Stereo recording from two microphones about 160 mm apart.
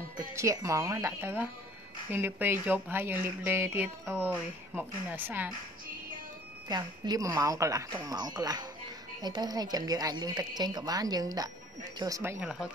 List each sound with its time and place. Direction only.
0.4 s speech: 20° right (ahead or behind)
6.7 s a woman's voice: 25° right (ahead or behind); by 12.6 s 5° right (ahead or behind)